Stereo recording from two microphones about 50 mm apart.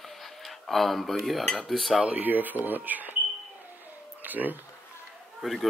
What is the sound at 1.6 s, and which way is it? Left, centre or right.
Speech, centre.